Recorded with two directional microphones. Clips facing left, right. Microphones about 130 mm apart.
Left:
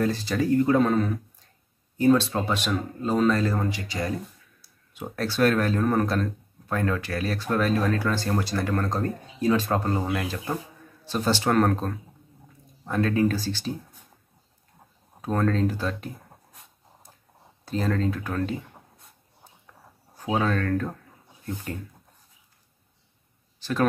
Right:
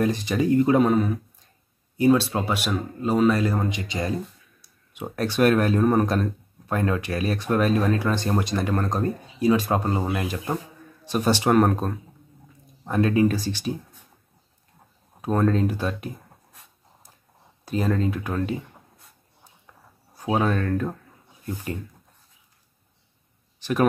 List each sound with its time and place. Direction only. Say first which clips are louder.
0.0 s speech: right 2 dB; 15° right (ahead or behind)
15.2 s speech: right 2 dB; 15° right (ahead or behind)
17.6 s speech: right 2 dB; 15° right (ahead or behind)
20.2 s speech: right 2 dB; 10° right (ahead or behind)
23.6 s speech: right 3 dB; 15° right (ahead or behind)